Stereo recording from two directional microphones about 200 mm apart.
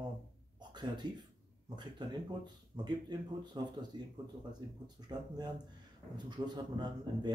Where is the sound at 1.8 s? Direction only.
20° right (ahead or behind).